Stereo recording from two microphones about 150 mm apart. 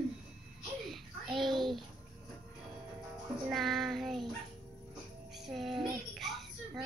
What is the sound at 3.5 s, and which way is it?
Speech, centre (ahead or behind).